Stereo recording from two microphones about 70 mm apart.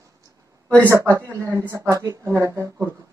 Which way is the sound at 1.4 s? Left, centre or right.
Right.